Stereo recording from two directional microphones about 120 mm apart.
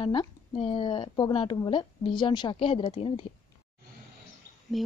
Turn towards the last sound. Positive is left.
turn(degrees=0)  # may be behind; listen again after turning